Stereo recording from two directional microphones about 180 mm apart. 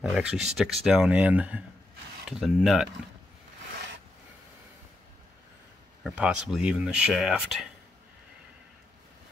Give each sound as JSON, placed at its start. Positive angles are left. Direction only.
{"t": 0.0, "sound": "speech", "side_deg": -5}
{"t": 6.0, "sound": "speech", "side_deg": -5}